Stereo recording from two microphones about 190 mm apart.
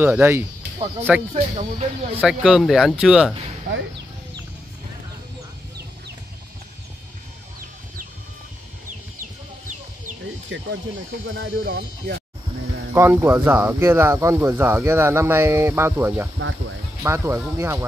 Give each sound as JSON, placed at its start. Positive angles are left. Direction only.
{"t": 0.0, "sound": "speech", "side_deg": -10}
{"t": 1.3, "sound": "speech", "side_deg": -35}
{"t": 2.1, "sound": "speech", "side_deg": -5}
{"t": 9.2, "sound": "chicken", "side_deg": -40}
{"t": 10.5, "sound": "speech", "side_deg": -80}
{"t": 12.9, "sound": "speech", "side_deg": -10}
{"t": 16.3, "sound": "speech", "side_deg": -90}
{"t": 17.0, "sound": "speech", "side_deg": -15}